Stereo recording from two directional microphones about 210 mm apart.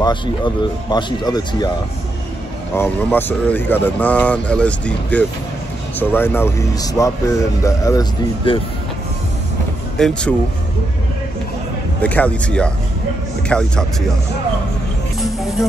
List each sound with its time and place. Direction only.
0.0 s speech: 20° left (ahead or behind)
2.7 s a man's voice: 10° left (ahead or behind)
9.9 s speech: centre (ahead or behind)
12.0 s speech: 5° left (ahead or behind)
15.1 s music: centre (ahead or behind)